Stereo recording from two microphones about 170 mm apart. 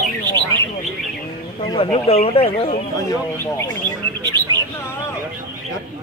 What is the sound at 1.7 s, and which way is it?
Speech, 35° left (ahead or behind).